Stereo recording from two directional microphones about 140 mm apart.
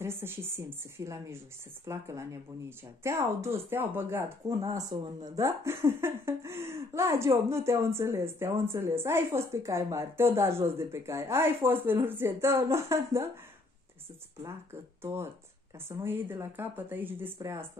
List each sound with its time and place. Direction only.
0.0 s a woman's voice: 15° right (ahead or behind)
14.4 s a woman's voice: 20° right (ahead or behind)